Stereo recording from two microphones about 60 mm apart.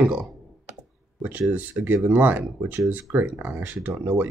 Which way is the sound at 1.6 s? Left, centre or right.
Right.